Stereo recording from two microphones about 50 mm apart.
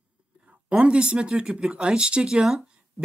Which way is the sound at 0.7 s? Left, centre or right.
Right.